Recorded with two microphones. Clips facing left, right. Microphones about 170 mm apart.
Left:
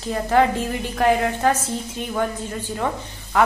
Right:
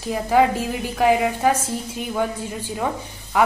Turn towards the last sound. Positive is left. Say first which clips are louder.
# even
turn(degrees=-10)  # may be behind; listen again after turning